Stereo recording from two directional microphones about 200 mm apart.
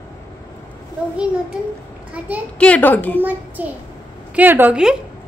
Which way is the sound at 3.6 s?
10° right (ahead or behind).